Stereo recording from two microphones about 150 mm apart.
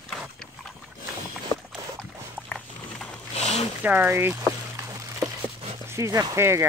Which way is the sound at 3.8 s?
15° right (ahead or behind).